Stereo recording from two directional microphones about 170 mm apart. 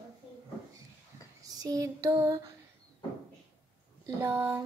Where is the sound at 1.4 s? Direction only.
20° right (ahead or behind).